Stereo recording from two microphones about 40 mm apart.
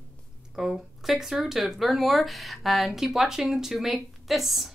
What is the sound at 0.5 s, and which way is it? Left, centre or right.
Speech, centre.